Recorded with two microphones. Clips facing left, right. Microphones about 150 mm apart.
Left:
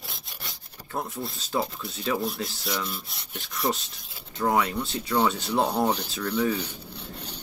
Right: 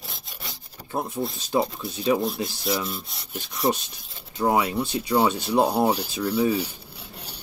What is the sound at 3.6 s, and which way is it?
Speech, 30° right (ahead or behind).